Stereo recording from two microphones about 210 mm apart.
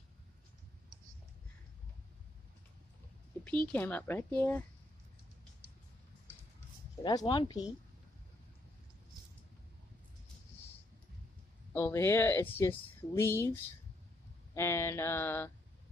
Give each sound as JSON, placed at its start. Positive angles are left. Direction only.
{"t": 3.7, "sound": "speech", "side_deg": 10}
{"t": 7.0, "sound": "speech", "side_deg": 20}
{"t": 11.7, "sound": "speech", "side_deg": 10}